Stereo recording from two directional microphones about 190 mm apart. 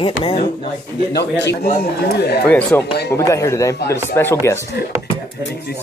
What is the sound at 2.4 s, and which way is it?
Speech, 10° left (ahead or behind).